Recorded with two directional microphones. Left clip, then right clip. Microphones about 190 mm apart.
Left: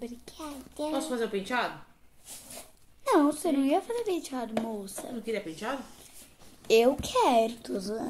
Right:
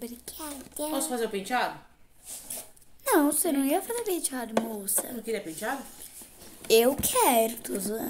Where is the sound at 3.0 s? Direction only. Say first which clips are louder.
Even; 15° right (ahead or behind).